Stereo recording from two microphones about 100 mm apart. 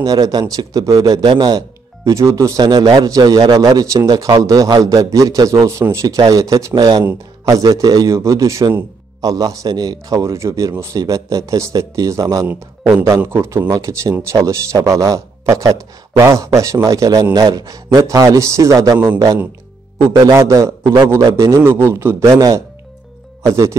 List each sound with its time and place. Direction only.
0.0 s a man's voice: 40° right (ahead or behind)
1.2 s a man's voice: 55° right (ahead or behind)
2.0 s a man's voice: 30° right (ahead or behind)
2.6 s a man's voice: 45° right (ahead or behind); by 6.1 s 30° right (ahead or behind)
6.1 s speech: 45° right (ahead or behind)
6.4 s a man's voice: 35° right (ahead or behind)
6.7 s speech: 50° right (ahead or behind)
7.6 s a man's voice: 40° right (ahead or behind)
13.2 s a man's voice: 25° right (ahead or behind)
13.7 s a man's voice: 35° right (ahead or behind)
22.3 s a man's voice: 35° right (ahead or behind)